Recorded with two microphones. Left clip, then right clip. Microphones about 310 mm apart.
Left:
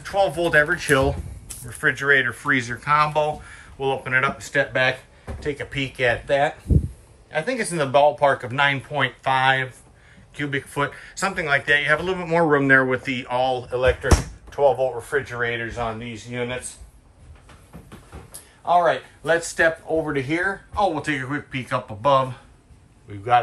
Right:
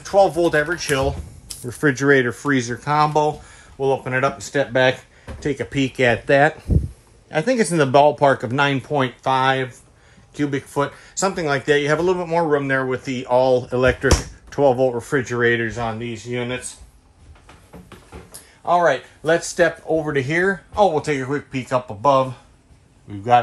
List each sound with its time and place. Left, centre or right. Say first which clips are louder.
0.0 s speech: right 5 dB; centre
1.7 s speech: right 2 dB; centre
19.2 s speech: right 2 dB; right